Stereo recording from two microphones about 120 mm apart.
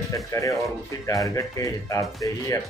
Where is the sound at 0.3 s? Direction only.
25° left (ahead or behind).